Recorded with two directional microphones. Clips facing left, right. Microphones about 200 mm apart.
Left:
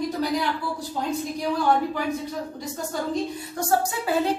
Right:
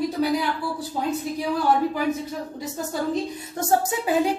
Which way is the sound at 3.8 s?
15° right (ahead or behind).